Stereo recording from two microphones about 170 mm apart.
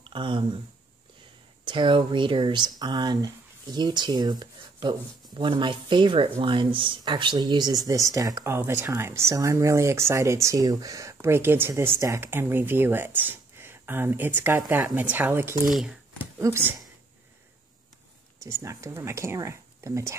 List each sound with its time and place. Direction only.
0.0 s speech: 30° right (ahead or behind)
1.6 s speech: 30° right (ahead or behind)
18.4 s speech: 15° right (ahead or behind)